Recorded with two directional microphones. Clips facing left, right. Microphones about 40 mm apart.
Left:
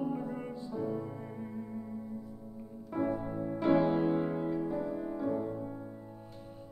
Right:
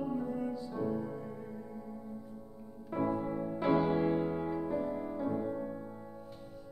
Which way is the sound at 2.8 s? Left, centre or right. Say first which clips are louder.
Even; centre.